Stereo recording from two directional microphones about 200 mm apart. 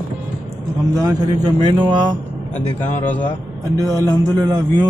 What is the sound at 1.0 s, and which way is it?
Speech, 20° right (ahead or behind).